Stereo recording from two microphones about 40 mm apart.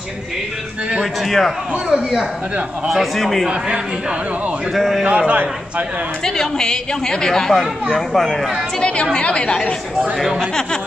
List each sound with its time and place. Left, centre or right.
1.2 s speech: centre
3.0 s speech: centre
3.4 s speech: right
4.7 s speech: centre
5.0 s a man's voice: right
6.2 s a woman's voice: centre
8.7 s speech: left
10.1 s speech: centre
10.4 s a woman's voice: centre